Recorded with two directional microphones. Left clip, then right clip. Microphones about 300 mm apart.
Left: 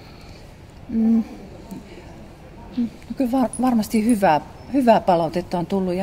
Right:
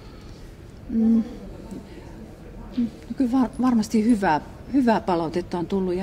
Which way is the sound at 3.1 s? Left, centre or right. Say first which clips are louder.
Left 2 dB; left.